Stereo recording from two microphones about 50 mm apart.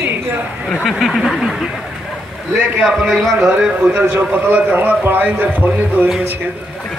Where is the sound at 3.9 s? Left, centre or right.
Right.